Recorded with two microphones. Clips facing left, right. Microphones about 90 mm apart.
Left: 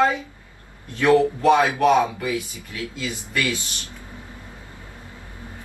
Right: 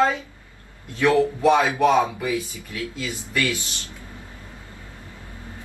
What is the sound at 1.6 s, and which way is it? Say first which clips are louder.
Speech: even; 20° right (ahead or behind).